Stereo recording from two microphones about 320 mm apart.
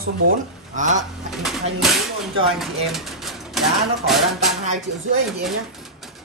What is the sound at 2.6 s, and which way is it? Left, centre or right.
Speech, centre.